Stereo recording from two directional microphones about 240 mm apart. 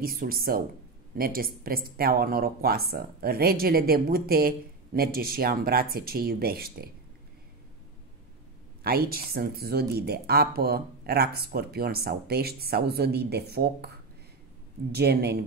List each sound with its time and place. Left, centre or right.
0.0 s speech: right
8.8 s speech: right
15.0 s speech: right